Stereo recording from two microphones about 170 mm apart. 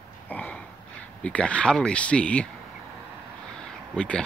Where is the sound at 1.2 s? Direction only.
5° left (ahead or behind).